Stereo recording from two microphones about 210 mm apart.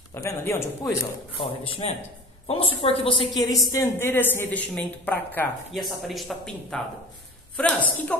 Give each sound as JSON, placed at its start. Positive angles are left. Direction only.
{"t": 0.1, "sound": "a woman's voice", "side_deg": 15}
{"t": 1.8, "sound": "a man's voice", "side_deg": 30}